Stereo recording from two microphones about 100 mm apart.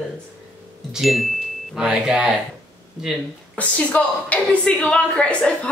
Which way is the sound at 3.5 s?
15° left (ahead or behind).